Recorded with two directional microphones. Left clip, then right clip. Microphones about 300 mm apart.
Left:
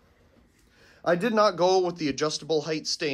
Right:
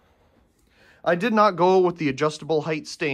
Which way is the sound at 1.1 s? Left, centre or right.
Right.